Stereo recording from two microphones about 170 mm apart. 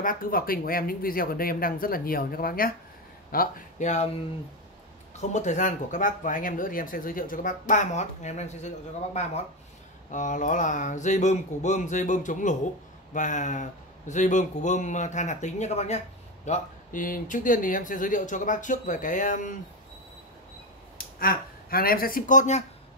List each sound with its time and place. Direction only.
0.0 s speech: 55° left (ahead or behind)
5.1 s speech: 45° left (ahead or behind)
21.2 s speech: 60° left (ahead or behind); by 22.7 s 45° left (ahead or behind)